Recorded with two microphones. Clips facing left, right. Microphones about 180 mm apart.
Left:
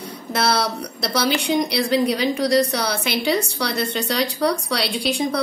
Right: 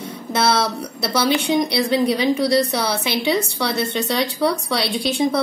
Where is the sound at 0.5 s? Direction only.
Centre (ahead or behind).